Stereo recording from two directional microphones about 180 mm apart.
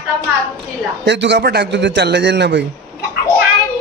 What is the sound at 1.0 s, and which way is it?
A man's voice, 75° right (ahead or behind).